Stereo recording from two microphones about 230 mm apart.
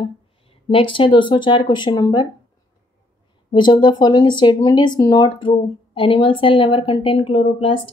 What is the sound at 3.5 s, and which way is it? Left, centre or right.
Speech, centre.